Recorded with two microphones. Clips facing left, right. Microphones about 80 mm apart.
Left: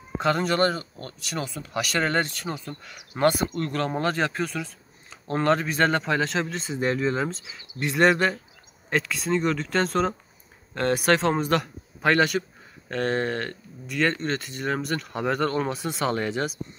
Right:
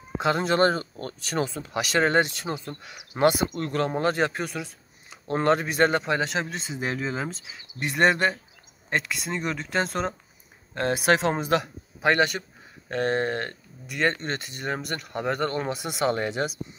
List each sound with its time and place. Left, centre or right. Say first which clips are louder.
0.2 s speech: right 1 dB; centre
3.9 s speech: right 1 dB; centre